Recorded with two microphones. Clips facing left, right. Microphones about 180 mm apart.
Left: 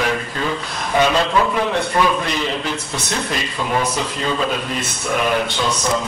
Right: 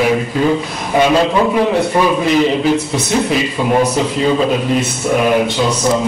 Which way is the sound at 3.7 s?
35° right (ahead or behind).